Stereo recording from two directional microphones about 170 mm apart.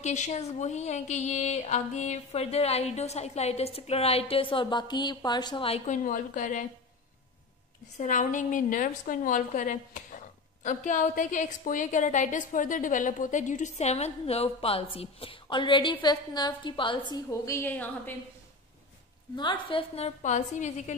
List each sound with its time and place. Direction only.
0.0 s a woman's voice: 45° left (ahead or behind)
5.9 s a woman's voice: 50° left (ahead or behind)
8.0 s a woman's voice: 50° left (ahead or behind); by 18.1 s 10° left (ahead or behind)
19.3 s a woman's voice: 30° left (ahead or behind)
20.2 s a woman's voice: 45° left (ahead or behind)